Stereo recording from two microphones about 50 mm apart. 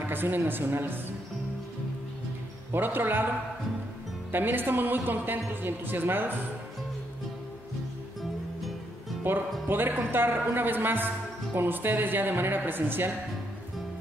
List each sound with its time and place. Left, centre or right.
0.0 s a woman's voice: right
2.7 s a woman's voice: right
4.3 s a woman's voice: right
9.3 s music: right
9.7 s a woman's voice: right